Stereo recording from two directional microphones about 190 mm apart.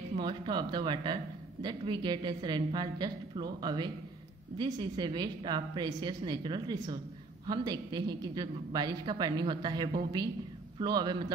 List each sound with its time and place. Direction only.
0.2 s speech: 25° right (ahead or behind)